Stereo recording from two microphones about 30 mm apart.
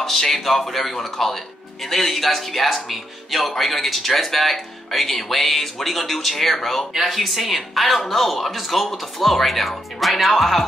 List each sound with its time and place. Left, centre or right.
0.0 s speech: centre